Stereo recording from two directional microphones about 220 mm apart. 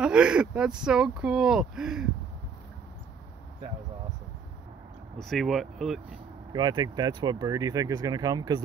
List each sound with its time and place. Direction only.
0.0 s speech: 5° right (ahead or behind)
5.2 s speech: centre (ahead or behind)
6.5 s speech: 20° right (ahead or behind)